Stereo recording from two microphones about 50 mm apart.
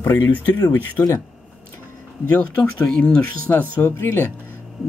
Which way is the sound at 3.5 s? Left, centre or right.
Left.